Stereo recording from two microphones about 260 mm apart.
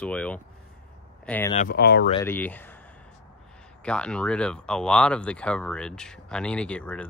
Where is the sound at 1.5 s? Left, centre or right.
Left.